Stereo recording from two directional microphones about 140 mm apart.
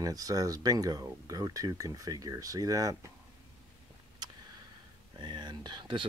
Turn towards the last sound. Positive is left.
turn(degrees=-35)  # may be behind; listen again after turning